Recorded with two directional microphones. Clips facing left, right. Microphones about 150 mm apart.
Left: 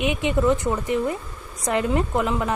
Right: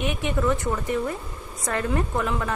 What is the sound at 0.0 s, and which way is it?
Speech, 20° left (ahead or behind).